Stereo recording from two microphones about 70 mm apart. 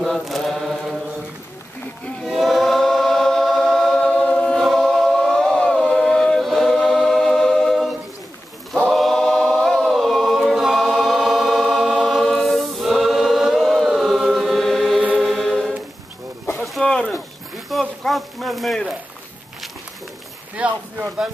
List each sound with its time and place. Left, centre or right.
0.0 s mantra: centre
2.2 s choir: centre
8.9 s choir: centre
13.8 s chant: centre
15.1 s choir: centre
16.8 s a sound: centre
20.5 s a sound: right